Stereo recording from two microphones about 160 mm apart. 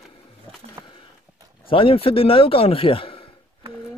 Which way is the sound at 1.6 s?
35° left (ahead or behind).